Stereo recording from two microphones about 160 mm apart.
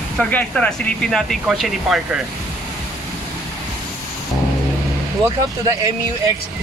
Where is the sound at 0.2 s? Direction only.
10° left (ahead or behind).